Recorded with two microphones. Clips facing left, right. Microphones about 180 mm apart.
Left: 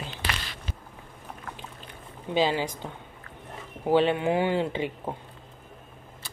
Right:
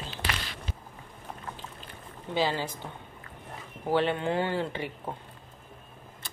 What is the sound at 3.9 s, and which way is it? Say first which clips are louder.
Speech: left 4 dB; 15° left (ahead or behind).